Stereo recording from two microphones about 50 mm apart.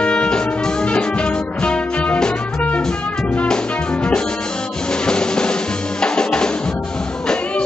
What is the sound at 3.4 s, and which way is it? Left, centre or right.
Music, centre.